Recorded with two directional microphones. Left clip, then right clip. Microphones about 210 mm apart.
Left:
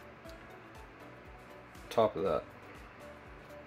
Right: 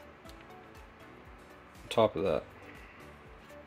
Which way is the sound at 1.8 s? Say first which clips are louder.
Right 2 dB; 25° right (ahead or behind).